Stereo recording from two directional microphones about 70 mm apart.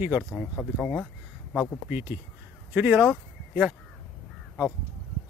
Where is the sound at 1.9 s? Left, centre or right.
Right.